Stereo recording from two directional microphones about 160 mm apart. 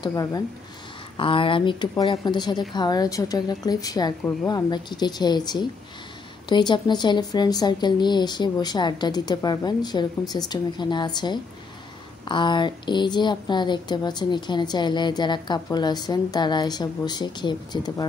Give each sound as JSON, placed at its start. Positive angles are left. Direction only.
{"t": 0.0, "sound": "speech", "side_deg": 20}
{"t": 1.1, "sound": "speech", "side_deg": 35}